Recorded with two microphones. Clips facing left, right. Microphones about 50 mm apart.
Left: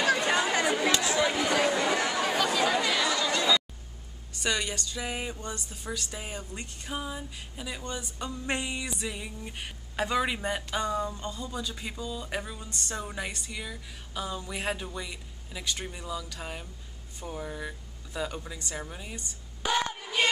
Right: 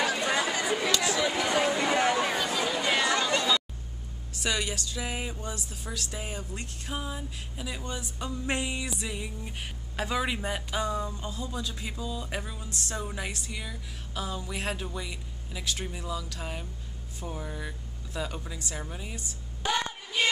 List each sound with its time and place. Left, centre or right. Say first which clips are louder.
0.3 s chatter: left 2 dB; left
2.0 s a sound: right 4 dB; right
2.2 s chatter: left 2 dB; centre
2.8 s chatter: right 1 dB; right
4.4 s a sound: even; centre
17.2 s speech: left 1 dB; centre